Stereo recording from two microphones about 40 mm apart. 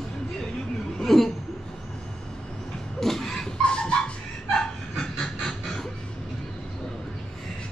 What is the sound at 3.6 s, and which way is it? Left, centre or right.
Dog, left.